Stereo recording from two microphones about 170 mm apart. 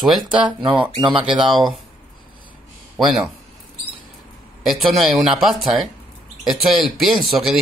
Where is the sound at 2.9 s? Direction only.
5° right (ahead or behind).